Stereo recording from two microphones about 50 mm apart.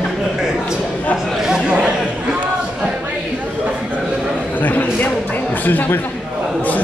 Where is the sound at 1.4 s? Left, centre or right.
Centre.